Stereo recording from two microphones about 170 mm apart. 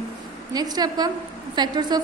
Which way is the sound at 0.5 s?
25° right (ahead or behind).